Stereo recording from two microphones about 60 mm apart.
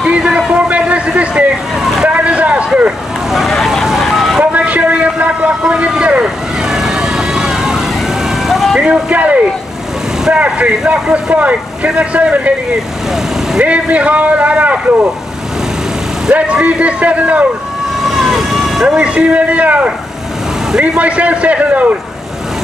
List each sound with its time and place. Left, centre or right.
0.0 s a sound: centre
1.8 s vehicle: centre
2.0 s vehicle: right
3.3 s vehicle: centre
4.5 s vehicle: right
6.2 s emergency vehicle: centre
8.8 s speech: centre
13.6 s speech: right
16.3 s speech: centre
18.0 s vehicle: centre
18.9 s speech: centre